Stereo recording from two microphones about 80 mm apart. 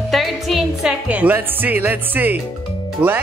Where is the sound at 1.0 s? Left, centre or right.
Centre.